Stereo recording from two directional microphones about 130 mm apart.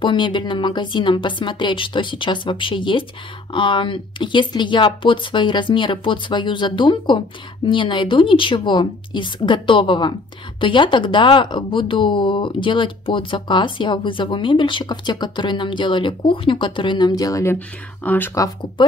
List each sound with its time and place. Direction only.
0.0 s speech: 40° left (ahead or behind)
17.6 s speech: 15° left (ahead or behind)
18.3 s speech: 25° left (ahead or behind)